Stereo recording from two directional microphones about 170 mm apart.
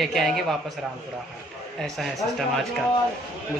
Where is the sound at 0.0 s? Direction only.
Centre (ahead or behind).